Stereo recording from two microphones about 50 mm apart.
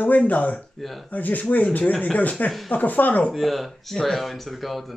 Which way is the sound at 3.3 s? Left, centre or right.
Centre.